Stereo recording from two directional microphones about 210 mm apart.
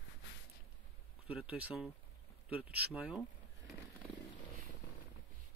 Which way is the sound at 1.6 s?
5° right (ahead or behind).